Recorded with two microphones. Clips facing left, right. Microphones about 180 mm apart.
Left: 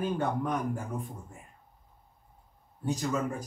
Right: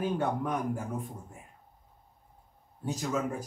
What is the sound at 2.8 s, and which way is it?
Speech, 5° right (ahead or behind).